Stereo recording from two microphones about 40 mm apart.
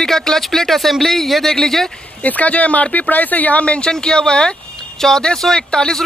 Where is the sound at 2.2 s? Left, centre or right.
Left.